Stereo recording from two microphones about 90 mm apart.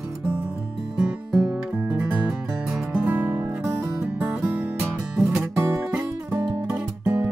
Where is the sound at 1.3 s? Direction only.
25° right (ahead or behind).